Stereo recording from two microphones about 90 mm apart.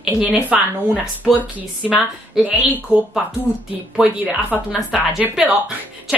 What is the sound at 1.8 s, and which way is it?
Speech, 5° right (ahead or behind).